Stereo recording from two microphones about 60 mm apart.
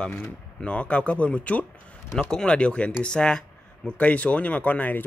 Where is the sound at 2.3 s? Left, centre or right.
Centre.